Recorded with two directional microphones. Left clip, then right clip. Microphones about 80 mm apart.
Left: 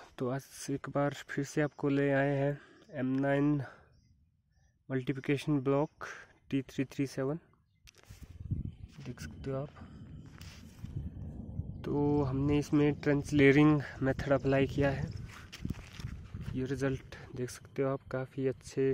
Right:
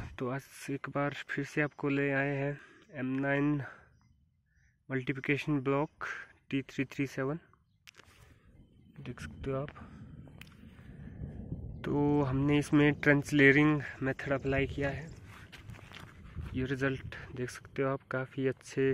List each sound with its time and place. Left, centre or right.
0.0 s speech: left
4.8 s speech: left
9.0 s speech: centre
11.8 s speech: centre
13.5 s speech: left
16.5 s speech: centre